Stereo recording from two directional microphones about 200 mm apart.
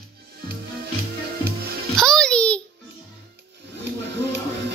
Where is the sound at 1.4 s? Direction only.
50° right (ahead or behind).